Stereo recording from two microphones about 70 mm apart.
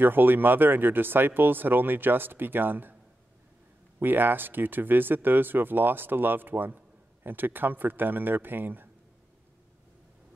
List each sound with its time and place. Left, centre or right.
0.0 s speech: right
4.0 s speech: right